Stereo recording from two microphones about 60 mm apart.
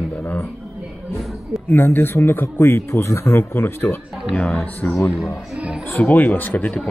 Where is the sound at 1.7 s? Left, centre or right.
Left.